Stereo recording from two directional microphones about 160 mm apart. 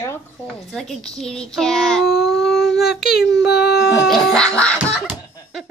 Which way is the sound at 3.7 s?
Centre (ahead or behind).